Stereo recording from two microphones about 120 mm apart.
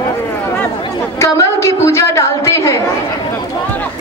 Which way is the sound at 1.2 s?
25° left (ahead or behind).